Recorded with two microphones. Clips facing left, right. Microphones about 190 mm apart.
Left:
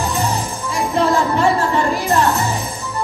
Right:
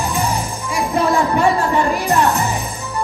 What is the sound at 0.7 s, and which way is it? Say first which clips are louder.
Speech: even; 15° right (ahead or behind).